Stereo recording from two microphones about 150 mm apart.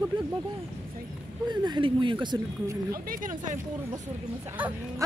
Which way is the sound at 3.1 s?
60° right (ahead or behind).